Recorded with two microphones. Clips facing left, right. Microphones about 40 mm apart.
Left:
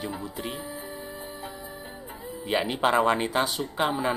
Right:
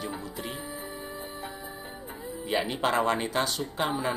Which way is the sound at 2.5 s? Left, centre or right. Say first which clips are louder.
Left 3 dB; centre.